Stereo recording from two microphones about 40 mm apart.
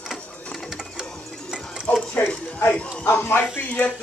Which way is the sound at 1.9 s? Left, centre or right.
Left.